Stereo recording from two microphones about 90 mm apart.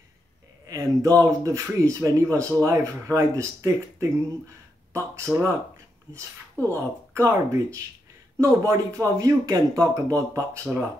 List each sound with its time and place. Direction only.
0.7 s speech: 40° right (ahead or behind)
6.5 s speech: 20° left (ahead or behind)
7.2 s speech: 35° right (ahead or behind)